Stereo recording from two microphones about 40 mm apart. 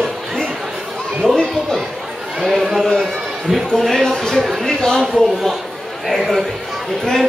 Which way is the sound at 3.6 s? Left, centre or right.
Centre.